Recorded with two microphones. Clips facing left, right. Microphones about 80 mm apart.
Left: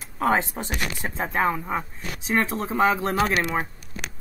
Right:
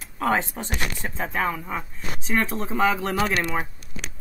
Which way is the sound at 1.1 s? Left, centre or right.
Left.